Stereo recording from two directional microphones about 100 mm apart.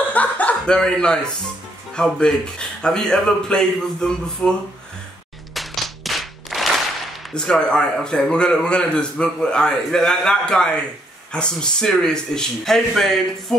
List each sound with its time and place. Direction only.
0.1 s chuckle: 15° left (ahead or behind)
2.0 s speech: 10° left (ahead or behind)
5.5 s clapping: centre (ahead or behind)
7.3 s speech: 10° left (ahead or behind)